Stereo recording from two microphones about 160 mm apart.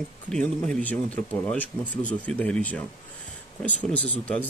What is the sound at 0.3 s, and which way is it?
Speech, 5° left (ahead or behind).